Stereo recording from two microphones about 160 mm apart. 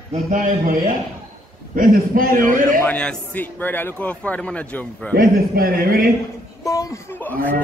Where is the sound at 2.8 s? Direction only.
10° left (ahead or behind).